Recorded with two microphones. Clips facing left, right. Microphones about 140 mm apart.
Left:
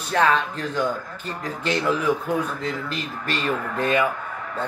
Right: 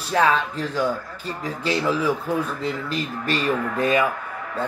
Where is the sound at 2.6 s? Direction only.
35° right (ahead or behind).